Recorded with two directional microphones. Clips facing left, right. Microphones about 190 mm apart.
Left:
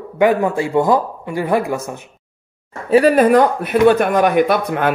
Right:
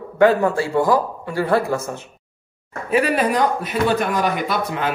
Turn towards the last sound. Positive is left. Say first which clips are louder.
# left 7 dB
turn(degrees=55)  # may be behind; listen again after turning